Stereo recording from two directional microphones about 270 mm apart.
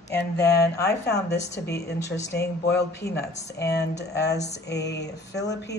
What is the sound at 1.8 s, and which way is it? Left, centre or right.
Speech, left.